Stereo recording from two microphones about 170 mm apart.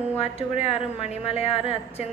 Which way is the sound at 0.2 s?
35° left (ahead or behind).